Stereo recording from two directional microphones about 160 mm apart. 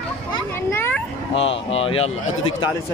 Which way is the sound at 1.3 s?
35° left (ahead or behind).